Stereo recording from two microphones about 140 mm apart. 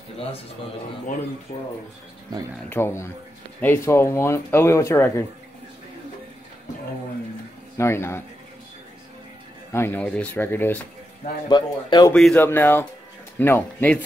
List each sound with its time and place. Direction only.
1.5 s speech: 50° left (ahead or behind)
2.7 s speech: 15° left (ahead or behind)
7.7 s speech: 20° left (ahead or behind)
9.7 s speech: 15° left (ahead or behind)
11.4 s speech: 30° left (ahead or behind)
12.1 s speech: 5° left (ahead or behind)
12.4 s speech: 15° left (ahead or behind)